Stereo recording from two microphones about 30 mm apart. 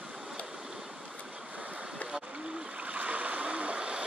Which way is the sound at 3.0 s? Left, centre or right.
Right.